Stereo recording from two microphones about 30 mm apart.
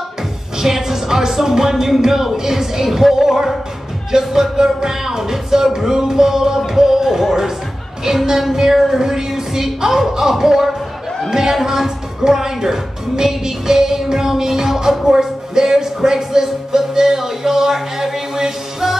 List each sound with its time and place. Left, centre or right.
0.6 s a woman's voice: centre